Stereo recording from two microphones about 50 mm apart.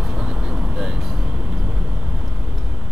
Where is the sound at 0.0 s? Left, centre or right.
Centre.